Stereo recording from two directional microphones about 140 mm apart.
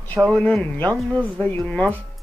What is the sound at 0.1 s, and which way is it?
Speech, 10° left (ahead or behind).